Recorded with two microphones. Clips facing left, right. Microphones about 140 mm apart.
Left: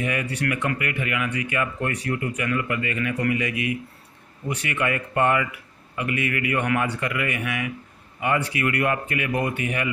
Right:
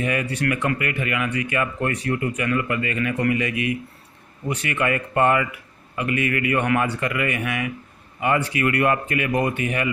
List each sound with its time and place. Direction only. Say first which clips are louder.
0.0 s speech: right 2 dB; 40° right (ahead or behind)